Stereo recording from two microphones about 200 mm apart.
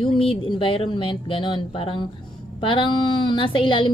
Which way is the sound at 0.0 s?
25° left (ahead or behind).